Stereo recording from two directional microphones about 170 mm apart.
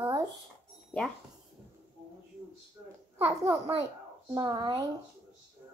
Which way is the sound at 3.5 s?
35° right (ahead or behind).